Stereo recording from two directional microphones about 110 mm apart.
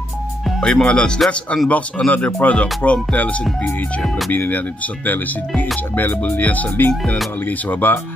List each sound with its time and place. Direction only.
0.6 s music: 5° left (ahead or behind)